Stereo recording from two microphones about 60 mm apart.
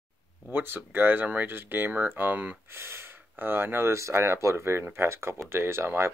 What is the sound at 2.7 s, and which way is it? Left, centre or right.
Speech, right.